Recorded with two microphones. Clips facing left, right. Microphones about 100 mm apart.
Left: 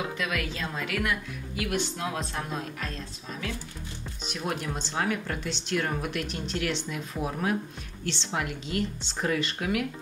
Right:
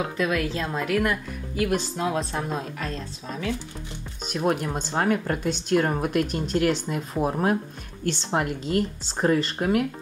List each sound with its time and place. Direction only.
0.2 s a woman's voice: 35° right (ahead or behind)
4.3 s speech: 45° right (ahead or behind)